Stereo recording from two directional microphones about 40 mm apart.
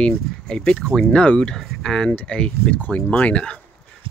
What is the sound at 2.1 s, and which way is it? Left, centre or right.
Speech, left.